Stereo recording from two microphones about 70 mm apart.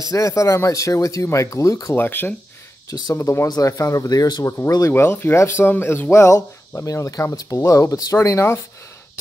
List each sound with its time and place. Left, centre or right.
0.1 s speech: left
2.0 s speech: left
3.1 s speech: left
4.9 s speech: left